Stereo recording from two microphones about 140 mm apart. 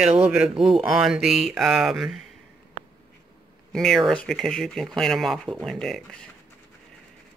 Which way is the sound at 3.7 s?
5° left (ahead or behind).